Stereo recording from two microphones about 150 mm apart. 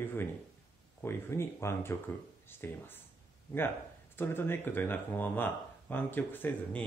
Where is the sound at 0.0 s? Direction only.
15° left (ahead or behind).